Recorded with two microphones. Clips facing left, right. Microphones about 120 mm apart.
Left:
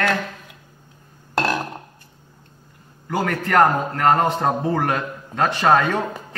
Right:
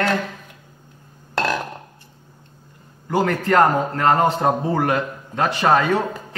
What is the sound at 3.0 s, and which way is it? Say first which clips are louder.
Speech: right 3 dB; 25° right (ahead or behind).